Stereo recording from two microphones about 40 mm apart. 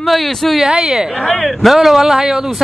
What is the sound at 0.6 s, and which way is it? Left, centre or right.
Speech, right.